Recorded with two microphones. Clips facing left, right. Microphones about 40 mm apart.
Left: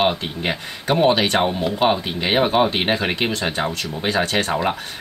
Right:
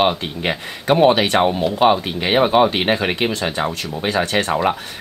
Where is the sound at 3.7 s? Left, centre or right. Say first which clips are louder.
Right 1 dB; right.